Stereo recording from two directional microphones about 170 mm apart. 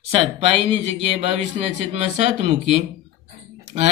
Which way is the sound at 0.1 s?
35° right (ahead or behind).